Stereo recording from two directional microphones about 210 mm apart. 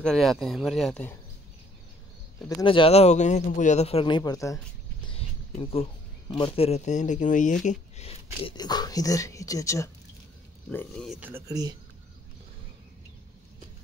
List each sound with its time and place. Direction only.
0.0 s speech: centre (ahead or behind)
2.4 s speech: 20° left (ahead or behind)
5.0 s a sound: 25° left (ahead or behind)
6.3 s speech: 25° left (ahead or behind)
11.1 s speech: 10° right (ahead or behind)